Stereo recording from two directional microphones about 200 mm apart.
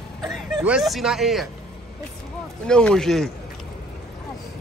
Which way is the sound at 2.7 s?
5° left (ahead or behind).